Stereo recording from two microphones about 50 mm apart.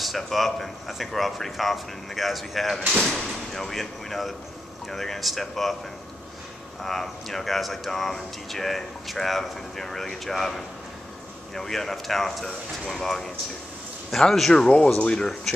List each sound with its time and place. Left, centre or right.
0.0 s speech: centre
6.8 s speech: centre
14.3 s speech: centre